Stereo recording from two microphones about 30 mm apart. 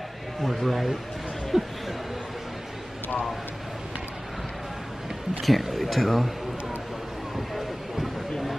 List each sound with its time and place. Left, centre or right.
0.4 s speech: centre
1.5 s speech: centre
5.4 s speech: centre
7.3 s a sound: centre